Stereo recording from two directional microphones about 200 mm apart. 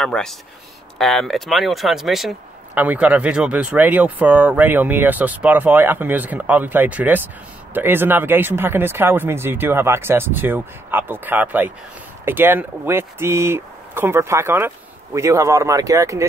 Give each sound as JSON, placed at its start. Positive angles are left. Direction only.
{"t": 0.0, "sound": "speech", "side_deg": 5}